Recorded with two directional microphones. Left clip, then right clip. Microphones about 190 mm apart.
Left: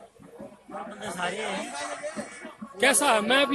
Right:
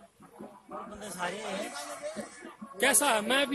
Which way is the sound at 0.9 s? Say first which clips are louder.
Left 5 dB; 35° right (ahead or behind).